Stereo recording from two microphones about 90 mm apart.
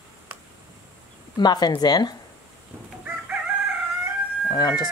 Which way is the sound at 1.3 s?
50° left (ahead or behind).